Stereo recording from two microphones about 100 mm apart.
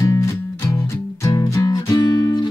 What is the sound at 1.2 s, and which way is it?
Music, 35° left (ahead or behind).